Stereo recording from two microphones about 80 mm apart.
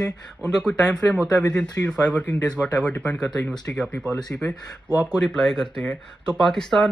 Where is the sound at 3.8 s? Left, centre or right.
Centre.